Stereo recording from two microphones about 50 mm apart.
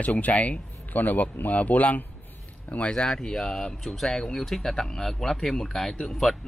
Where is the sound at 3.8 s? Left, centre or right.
Centre.